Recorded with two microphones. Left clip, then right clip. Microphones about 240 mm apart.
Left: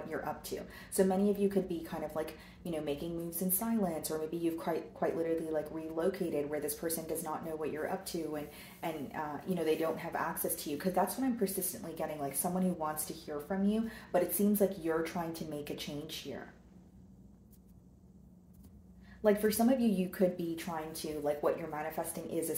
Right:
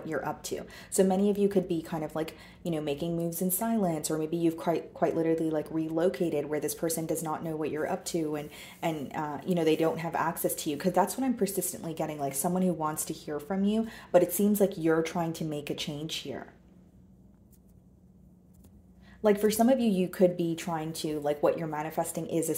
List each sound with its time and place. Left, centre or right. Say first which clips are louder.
0.1 s speech: right 7 dB; right
19.2 s speech: right 5 dB; right